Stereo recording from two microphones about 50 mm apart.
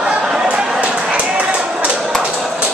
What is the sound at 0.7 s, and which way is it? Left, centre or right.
Run, right.